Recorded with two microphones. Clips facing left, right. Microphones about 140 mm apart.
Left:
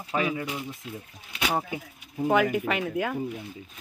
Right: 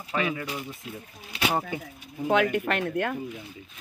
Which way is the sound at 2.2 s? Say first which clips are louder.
Even; 5° left (ahead or behind).